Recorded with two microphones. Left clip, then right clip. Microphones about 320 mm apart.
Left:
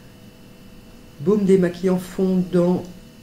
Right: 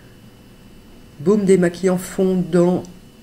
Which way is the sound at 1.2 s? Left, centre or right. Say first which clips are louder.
Right 2 dB; right.